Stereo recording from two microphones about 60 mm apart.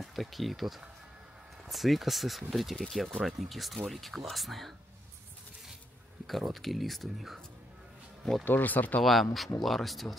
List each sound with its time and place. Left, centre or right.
0.0 s speech: centre
6.2 s speech: centre
8.5 s speech: left
9.0 s speech: centre